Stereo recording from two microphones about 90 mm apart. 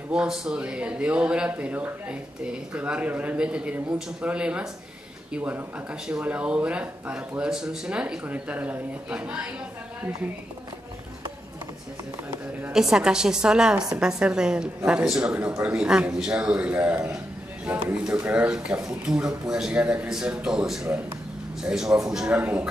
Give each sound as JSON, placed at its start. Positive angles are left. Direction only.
{"t": 0.1, "sound": "a man's voice", "side_deg": -10}
{"t": 12.7, "sound": "a man's voice", "side_deg": -5}